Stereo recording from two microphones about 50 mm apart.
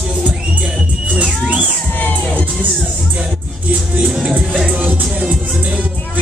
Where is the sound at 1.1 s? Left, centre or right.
Right.